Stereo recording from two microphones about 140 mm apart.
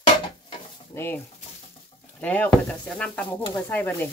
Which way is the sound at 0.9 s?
15° left (ahead or behind).